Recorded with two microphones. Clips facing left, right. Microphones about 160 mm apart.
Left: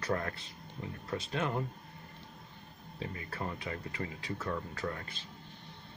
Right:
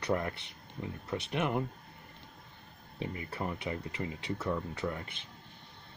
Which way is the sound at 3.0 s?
20° right (ahead or behind).